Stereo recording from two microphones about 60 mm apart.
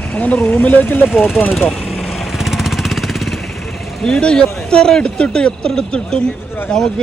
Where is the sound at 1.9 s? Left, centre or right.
Centre.